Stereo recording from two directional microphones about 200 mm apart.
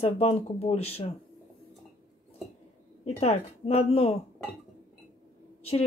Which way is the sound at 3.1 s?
30° left (ahead or behind).